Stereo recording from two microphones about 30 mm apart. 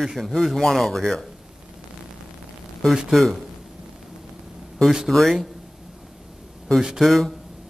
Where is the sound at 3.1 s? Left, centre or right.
Centre.